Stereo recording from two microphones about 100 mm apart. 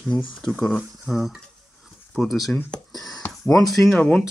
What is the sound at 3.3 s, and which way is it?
Speech, centre (ahead or behind).